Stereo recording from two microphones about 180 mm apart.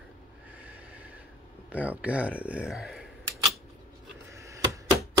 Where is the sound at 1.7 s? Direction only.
10° right (ahead or behind).